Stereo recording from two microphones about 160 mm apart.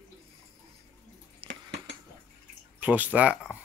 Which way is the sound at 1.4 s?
35° right (ahead or behind).